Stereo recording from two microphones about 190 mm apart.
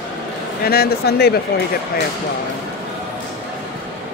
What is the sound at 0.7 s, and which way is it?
Speech, 55° left (ahead or behind).